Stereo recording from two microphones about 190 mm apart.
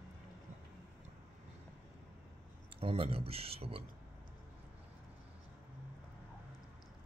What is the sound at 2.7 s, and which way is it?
A man's voice, 30° right (ahead or behind).